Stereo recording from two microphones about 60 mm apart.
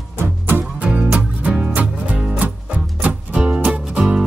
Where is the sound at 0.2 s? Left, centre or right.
Right.